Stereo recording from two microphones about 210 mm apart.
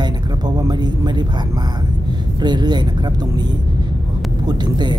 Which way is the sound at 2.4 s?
20° right (ahead or behind).